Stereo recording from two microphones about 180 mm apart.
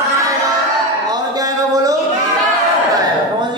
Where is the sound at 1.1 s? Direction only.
20° right (ahead or behind).